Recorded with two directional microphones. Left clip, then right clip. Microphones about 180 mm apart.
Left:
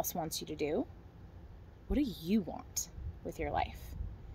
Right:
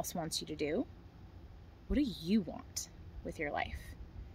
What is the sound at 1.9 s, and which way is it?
Speech, 15° right (ahead or behind).